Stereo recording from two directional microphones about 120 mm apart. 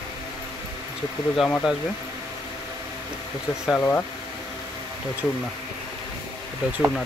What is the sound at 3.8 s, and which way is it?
Speech, 15° left (ahead or behind).